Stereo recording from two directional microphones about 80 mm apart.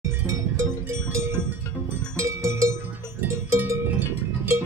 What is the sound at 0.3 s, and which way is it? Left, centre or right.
Music, right.